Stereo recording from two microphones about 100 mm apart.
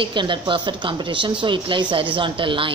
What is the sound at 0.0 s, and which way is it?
A woman's voice, 55° right (ahead or behind).